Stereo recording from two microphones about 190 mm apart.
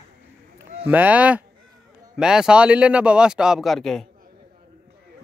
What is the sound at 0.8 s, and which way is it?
A man's voice, 10° right (ahead or behind).